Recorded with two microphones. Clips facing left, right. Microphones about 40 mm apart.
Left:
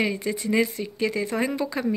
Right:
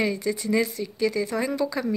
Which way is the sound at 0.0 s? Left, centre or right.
Left.